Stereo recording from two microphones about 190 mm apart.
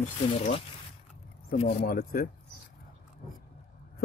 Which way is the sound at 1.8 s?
50° left (ahead or behind).